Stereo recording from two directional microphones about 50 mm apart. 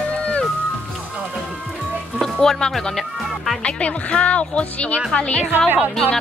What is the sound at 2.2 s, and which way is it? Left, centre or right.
Music, centre.